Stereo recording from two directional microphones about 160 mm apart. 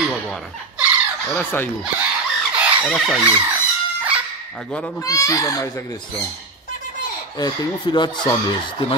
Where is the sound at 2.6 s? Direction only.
Centre (ahead or behind).